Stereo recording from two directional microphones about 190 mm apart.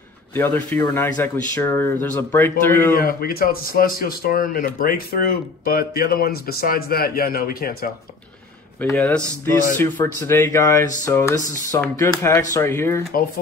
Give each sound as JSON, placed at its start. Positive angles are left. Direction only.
{"t": 0.3, "sound": "speech", "side_deg": 10}
{"t": 2.9, "sound": "speech", "side_deg": 50}
{"t": 8.9, "sound": "speech", "side_deg": 5}